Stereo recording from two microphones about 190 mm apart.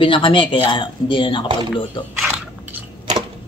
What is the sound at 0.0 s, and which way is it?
Speech, 25° left (ahead or behind).